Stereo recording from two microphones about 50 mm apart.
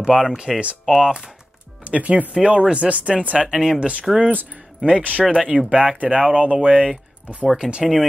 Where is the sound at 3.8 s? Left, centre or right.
Right.